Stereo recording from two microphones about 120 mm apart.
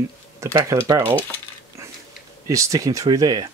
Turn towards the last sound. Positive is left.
turn(degrees=-30)  # may be behind; listen again after turning